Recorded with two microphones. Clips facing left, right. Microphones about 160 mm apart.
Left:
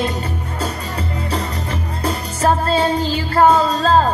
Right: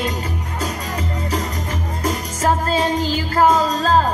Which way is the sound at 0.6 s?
30° left (ahead or behind).